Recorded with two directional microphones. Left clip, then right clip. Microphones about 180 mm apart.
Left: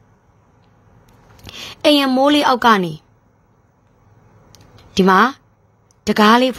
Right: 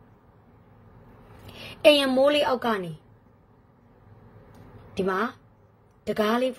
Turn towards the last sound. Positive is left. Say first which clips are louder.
# left 12 dB
turn(degrees=45)  # may be behind; listen again after turning